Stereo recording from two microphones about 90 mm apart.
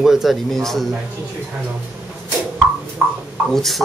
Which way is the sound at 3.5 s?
5° left (ahead or behind).